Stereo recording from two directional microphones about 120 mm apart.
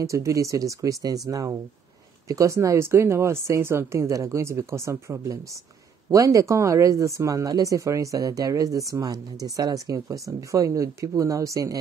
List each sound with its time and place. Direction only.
0.0 s speech: 25° right (ahead or behind)